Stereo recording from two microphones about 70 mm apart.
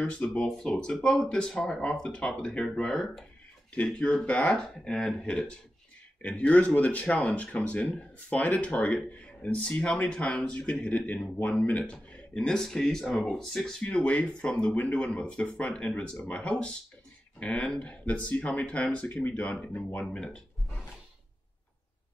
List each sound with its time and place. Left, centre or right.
0.0 s speech: centre
13.8 s speech: centre
18.0 s speech: left